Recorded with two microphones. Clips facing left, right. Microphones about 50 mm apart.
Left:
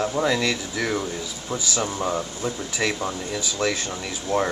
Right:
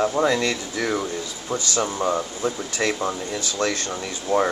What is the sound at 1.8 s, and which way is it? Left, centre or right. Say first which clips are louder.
Speech: right 2 dB; centre.